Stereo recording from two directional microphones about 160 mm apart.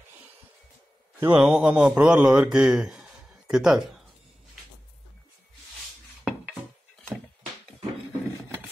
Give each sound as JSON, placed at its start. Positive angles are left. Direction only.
{"t": 1.2, "sound": "a man's voice", "side_deg": -10}